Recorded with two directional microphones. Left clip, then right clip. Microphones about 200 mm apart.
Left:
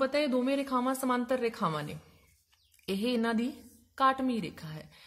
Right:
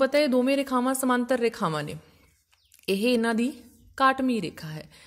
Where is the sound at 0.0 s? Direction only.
35° right (ahead or behind).